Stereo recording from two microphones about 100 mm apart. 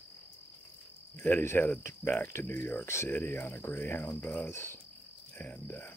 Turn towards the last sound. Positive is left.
turn(degrees=20)  # may be behind; listen again after turning